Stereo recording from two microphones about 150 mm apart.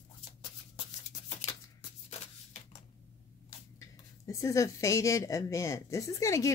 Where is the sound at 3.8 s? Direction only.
20° left (ahead or behind).